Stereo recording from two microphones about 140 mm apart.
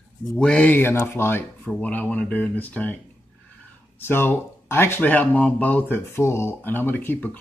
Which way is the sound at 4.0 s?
15° left (ahead or behind).